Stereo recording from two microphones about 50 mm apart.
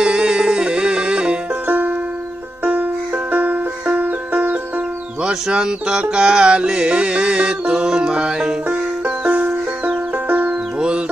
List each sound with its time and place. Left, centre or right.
0.0 s music: centre
1.7 s music: right
5.5 s music: centre
8.6 s music: right
10.8 s music: centre